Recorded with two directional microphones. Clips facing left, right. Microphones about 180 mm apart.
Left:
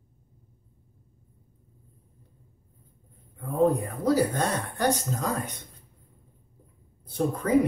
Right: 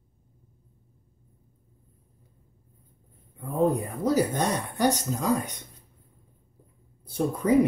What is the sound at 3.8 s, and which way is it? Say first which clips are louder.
Speech: left 1 dB; 15° right (ahead or behind).